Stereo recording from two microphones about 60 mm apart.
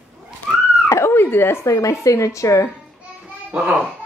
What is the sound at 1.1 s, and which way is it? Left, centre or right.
Speech, left.